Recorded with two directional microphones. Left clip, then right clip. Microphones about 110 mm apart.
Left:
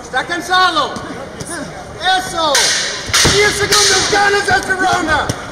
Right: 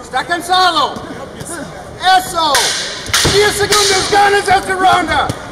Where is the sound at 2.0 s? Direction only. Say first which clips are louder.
Right 3 dB; 40° right (ahead or behind).